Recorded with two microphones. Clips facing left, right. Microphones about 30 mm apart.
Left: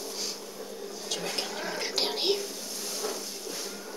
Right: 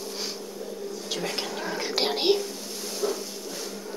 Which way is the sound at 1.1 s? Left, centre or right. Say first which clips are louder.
Right 2 dB; centre.